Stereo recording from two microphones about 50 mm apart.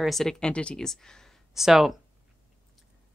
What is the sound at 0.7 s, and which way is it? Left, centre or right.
Speech, centre.